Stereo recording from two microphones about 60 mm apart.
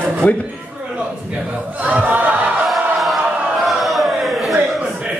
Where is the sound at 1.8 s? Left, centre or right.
Right.